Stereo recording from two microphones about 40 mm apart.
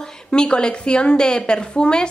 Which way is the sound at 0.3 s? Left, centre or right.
Left.